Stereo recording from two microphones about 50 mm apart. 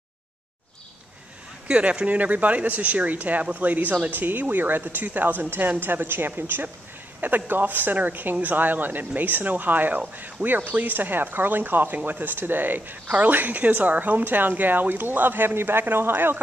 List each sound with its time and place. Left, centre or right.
1.7 s speech: right